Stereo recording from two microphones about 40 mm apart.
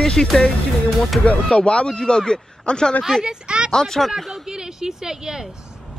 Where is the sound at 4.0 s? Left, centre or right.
Centre.